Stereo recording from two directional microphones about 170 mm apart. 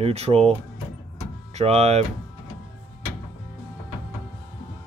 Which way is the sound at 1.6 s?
40° right (ahead or behind).